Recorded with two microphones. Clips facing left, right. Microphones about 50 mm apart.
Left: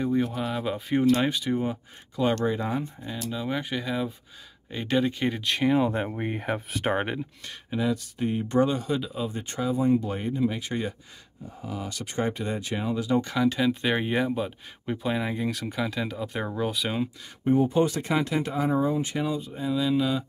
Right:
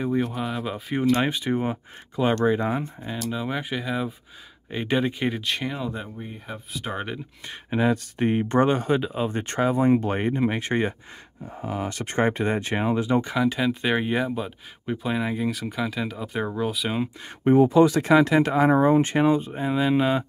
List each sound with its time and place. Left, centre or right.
0.0 s speech: centre
1.1 s speech: right
5.3 s speech: centre
6.0 s speech: left
6.9 s speech: left
7.7 s speech: right
9.4 s speech: right
13.2 s speech: centre
17.5 s speech: right